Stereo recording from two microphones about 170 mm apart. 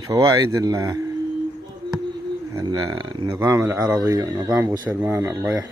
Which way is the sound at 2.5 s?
20° right (ahead or behind).